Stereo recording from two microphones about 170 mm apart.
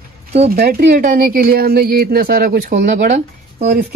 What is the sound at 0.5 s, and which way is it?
Speech, 60° right (ahead or behind).